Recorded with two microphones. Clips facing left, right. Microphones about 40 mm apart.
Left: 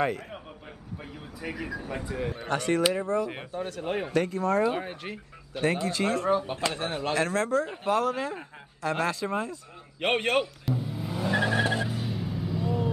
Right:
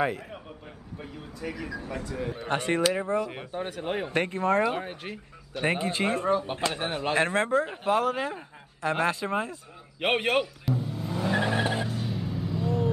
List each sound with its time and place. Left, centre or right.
1.0 s speech: centre
2.4 s a man's voice: right
4.1 s speech: right
4.6 s speech: centre
5.6 s speech: right
6.7 s a man's voice: centre
7.2 s speech: right
7.7 s speech: centre
9.9 s speech: centre
10.4 s vehicle: centre
11.8 s vehicle: centre